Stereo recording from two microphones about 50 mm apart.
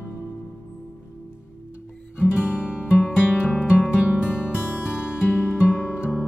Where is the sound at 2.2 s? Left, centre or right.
Right.